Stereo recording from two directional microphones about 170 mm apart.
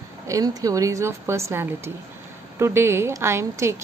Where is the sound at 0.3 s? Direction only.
20° right (ahead or behind).